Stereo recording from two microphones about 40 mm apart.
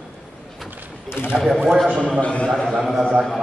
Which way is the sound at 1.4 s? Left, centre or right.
Centre.